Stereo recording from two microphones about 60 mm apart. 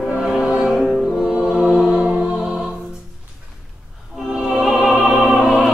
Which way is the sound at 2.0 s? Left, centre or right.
Centre.